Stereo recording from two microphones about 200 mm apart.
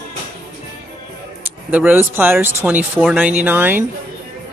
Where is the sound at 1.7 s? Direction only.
10° right (ahead or behind).